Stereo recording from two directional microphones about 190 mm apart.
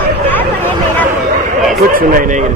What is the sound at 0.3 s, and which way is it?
Hubbub, 10° left (ahead or behind).